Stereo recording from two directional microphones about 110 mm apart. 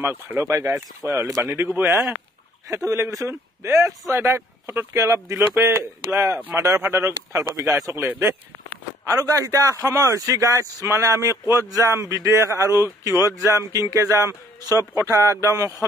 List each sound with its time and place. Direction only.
0.0 s a man's voice: 20° right (ahead or behind)